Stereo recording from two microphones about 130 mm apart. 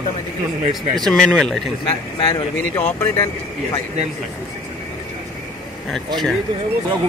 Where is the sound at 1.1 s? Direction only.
Centre (ahead or behind).